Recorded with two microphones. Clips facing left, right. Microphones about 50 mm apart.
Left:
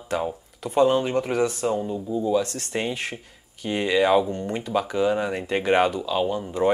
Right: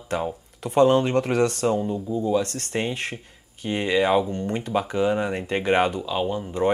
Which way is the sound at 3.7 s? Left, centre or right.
Centre.